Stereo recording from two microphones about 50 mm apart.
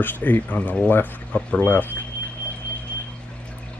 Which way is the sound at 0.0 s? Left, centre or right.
Left.